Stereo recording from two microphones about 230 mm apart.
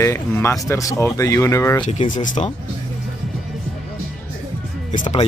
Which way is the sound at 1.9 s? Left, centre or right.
Left.